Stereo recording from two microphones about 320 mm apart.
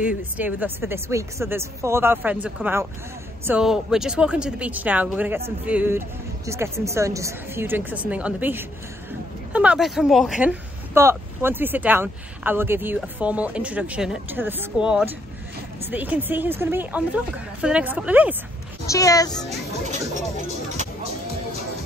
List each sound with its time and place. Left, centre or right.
0.2 s speech: centre
18.9 s speech: centre
20.7 s music: right